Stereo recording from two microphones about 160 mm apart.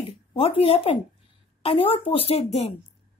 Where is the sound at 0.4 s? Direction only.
35° left (ahead or behind).